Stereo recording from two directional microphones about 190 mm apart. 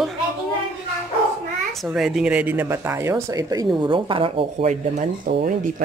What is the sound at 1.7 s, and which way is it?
Speech, centre (ahead or behind).